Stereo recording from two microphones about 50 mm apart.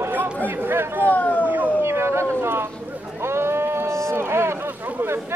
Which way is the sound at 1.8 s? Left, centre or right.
Right.